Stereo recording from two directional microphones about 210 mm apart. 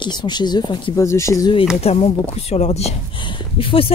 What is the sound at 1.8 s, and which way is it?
Speech, 30° left (ahead or behind).